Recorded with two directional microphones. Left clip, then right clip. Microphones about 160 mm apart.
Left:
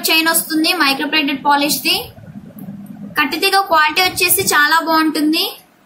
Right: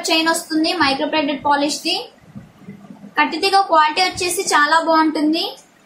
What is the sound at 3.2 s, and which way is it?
A woman's voice, 25° left (ahead or behind).